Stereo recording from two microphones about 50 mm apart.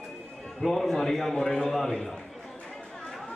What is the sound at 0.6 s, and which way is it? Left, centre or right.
A man's voice, centre.